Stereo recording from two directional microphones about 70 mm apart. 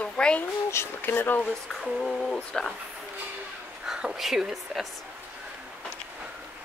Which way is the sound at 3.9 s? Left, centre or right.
Centre.